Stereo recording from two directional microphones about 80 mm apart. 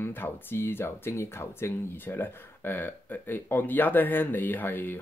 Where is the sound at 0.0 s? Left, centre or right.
Left.